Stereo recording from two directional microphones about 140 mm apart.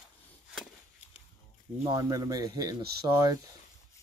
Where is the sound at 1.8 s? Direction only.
25° right (ahead or behind).